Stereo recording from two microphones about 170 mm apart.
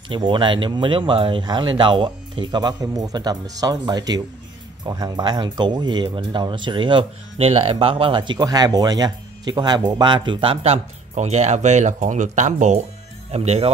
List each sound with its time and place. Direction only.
0.1 s speech: 30° right (ahead or behind)